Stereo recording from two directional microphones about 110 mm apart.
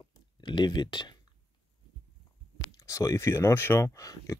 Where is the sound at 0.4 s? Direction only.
45° left (ahead or behind).